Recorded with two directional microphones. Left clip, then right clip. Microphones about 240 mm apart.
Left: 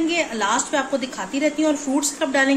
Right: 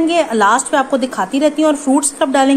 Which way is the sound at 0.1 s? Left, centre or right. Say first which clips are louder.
Right 9 dB; right.